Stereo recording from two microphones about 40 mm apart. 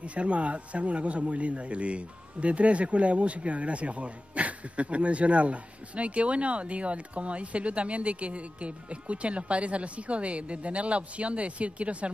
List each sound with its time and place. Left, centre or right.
0.0 s speech: right